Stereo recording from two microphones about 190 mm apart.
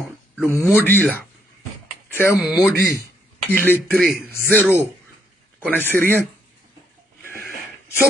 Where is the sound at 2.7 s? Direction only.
55° right (ahead or behind).